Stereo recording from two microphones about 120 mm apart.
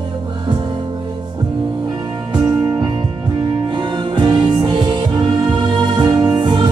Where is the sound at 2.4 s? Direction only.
35° right (ahead or behind).